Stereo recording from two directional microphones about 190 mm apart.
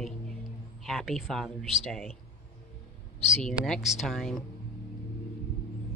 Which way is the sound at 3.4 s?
Centre (ahead or behind).